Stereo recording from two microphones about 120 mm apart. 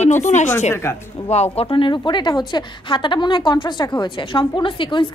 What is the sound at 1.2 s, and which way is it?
Speech, 60° left (ahead or behind).